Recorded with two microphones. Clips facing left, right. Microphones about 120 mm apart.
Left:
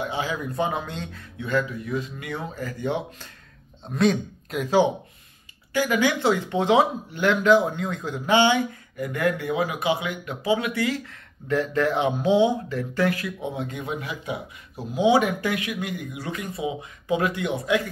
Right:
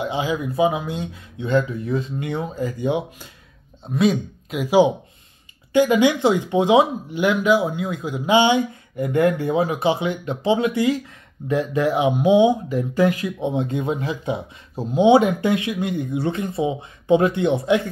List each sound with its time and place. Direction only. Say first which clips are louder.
0.0 s speech: right 5 dB; 15° right (ahead or behind)
0.5 s speech: right 6 dB; 5° right (ahead or behind)
1.6 s speech: right 4 dB; 30° right (ahead or behind); by 3.3 s 15° right (ahead or behind)
3.8 s speech: right 2 dB; 5° right (ahead or behind); by 17.8 s 25° right (ahead or behind)